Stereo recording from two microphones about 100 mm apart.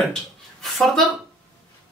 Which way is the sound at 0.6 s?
Centre (ahead or behind).